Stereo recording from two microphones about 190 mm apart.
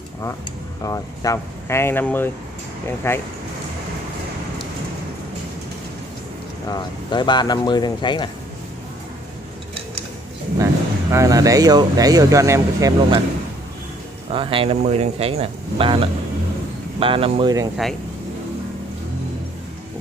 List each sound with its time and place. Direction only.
0.8 s speech: 20° left (ahead or behind)
6.7 s speech: 25° left (ahead or behind)
10.6 s speech: 15° right (ahead or behind)
14.3 s speech: 25° right (ahead or behind)